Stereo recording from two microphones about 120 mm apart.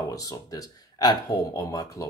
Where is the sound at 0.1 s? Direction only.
30° left (ahead or behind).